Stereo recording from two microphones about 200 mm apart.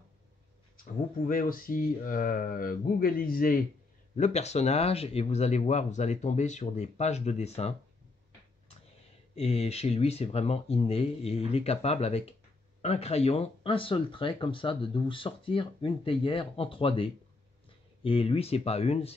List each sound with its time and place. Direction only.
1.2 s speech: 45° left (ahead or behind)
4.2 s speech: 35° left (ahead or behind)
9.3 s speech: 30° left (ahead or behind)